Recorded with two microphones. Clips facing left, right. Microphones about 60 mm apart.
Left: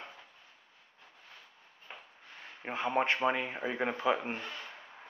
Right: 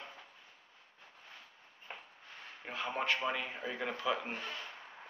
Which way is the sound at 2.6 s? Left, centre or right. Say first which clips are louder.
Left 6 dB; left.